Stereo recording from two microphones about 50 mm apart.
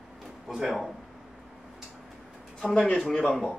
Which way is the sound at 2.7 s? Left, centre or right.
Centre.